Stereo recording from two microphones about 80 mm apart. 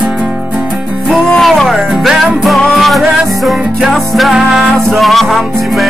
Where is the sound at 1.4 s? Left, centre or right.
Centre.